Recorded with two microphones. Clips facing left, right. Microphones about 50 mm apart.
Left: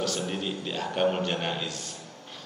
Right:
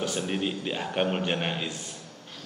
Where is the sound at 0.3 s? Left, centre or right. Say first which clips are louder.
Right 2 dB; centre.